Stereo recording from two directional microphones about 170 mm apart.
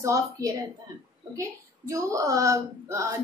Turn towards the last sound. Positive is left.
turn(degrees=-20)  # may be behind; listen again after turning